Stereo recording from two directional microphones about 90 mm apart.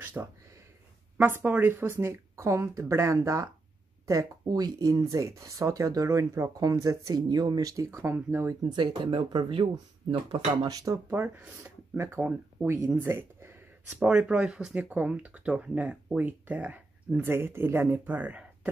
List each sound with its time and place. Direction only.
0.0 s a sound: 25° right (ahead or behind)
1.1 s speech: 20° right (ahead or behind); by 8.0 s 40° right (ahead or behind)
8.0 s speech: 30° right (ahead or behind)
8.6 s speech: 60° right (ahead or behind)
10.7 s speech: 40° right (ahead or behind)
11.1 s speech: 20° right (ahead or behind)
13.9 s speech: 15° right (ahead or behind)